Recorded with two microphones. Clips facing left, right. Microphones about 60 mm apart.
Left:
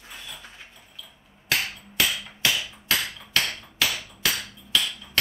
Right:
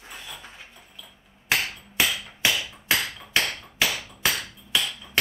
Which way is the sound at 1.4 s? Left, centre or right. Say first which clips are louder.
Right 1 dB; centre.